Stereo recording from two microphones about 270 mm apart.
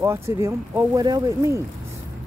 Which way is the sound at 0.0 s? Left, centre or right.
Centre.